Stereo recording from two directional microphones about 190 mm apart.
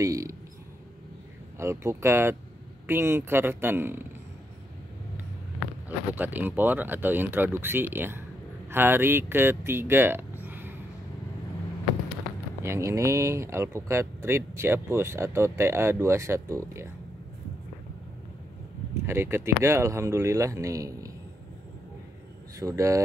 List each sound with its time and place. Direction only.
0.0 s speech: 15° right (ahead or behind)
1.6 s speech: 15° right (ahead or behind)
5.9 s speech: 10° right (ahead or behind)
12.6 s speech: 15° right (ahead or behind)
19.0 s speech: 15° right (ahead or behind)
22.6 s speech: 15° right (ahead or behind)